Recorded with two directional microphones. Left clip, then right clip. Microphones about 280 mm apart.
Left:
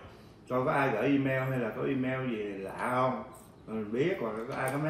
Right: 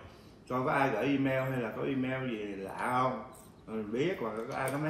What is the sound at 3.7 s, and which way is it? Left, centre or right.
Speech, centre.